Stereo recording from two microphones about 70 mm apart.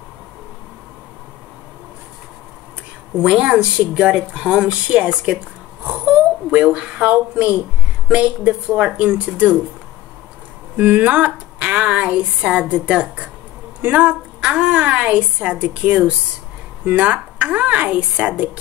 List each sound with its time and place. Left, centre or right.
3.2 s speech: centre
10.8 s a woman's voice: right